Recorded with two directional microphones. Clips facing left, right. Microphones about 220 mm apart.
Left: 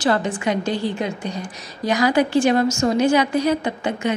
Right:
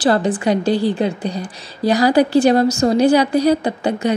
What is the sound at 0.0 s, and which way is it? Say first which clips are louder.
A woman's voice: right 4 dB; 35° right (ahead or behind).